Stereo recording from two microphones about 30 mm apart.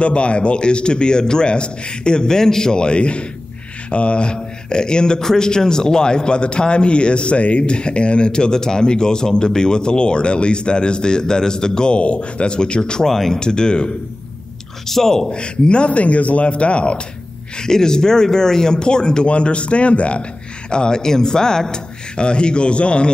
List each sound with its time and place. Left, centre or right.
0.0 s a man's voice: left; by 2.8 s centre
2.8 s a man's voice: left
11.9 s a man's voice: left
13.0 s a man's voice: centre
13.4 s a man's voice: left
14.9 s a man's voice: centre
15.3 s a man's voice: left
15.9 s speech: left
17.6 s a man's voice: left
19.2 s a man's voice: left
20.7 s a man's voice: left